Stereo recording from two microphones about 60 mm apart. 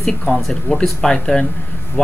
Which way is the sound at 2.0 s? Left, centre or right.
Left.